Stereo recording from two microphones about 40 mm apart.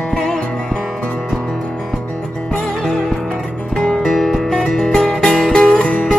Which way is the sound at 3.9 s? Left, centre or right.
Centre.